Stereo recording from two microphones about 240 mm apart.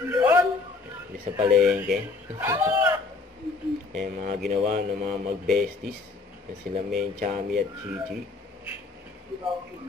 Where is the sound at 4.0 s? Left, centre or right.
Right.